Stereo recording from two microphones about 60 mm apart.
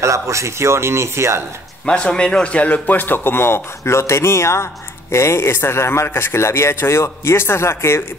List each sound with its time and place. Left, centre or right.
0.0 s speech: right
1.9 s a man's voice: centre; by 8.0 s left